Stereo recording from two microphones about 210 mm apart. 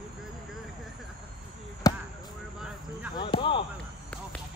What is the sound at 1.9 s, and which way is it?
Basketball bounce, 15° left (ahead or behind).